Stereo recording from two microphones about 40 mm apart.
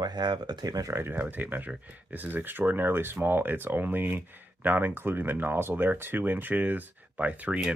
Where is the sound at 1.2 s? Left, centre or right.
Right.